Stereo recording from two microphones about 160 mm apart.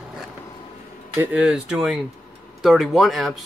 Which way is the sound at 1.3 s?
5° right (ahead or behind).